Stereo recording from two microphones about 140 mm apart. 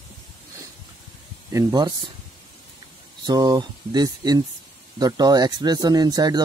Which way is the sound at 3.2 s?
30° right (ahead or behind).